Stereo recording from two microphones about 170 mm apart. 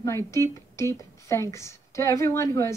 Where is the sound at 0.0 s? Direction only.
15° left (ahead or behind).